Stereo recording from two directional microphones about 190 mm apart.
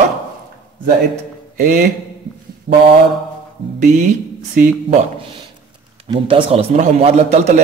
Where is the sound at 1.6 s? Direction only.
45° right (ahead or behind).